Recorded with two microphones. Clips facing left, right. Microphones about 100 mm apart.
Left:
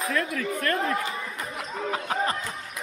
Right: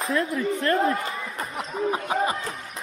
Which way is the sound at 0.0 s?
30° right (ahead or behind).